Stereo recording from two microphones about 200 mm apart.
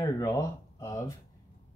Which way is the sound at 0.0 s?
20° left (ahead or behind).